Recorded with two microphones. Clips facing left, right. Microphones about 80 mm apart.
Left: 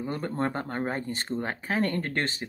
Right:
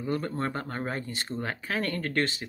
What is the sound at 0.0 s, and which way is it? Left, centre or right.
Speech, left.